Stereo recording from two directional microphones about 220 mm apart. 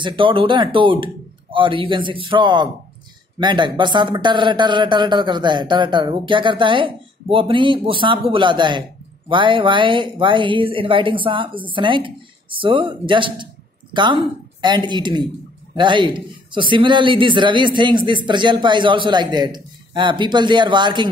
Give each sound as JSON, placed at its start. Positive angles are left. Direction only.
{"t": 0.0, "sound": "a man's voice", "side_deg": -20}